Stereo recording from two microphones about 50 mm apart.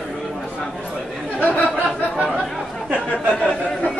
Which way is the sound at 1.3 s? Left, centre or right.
Left.